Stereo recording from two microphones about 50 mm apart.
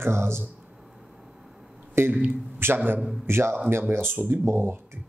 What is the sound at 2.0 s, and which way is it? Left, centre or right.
Speech, right.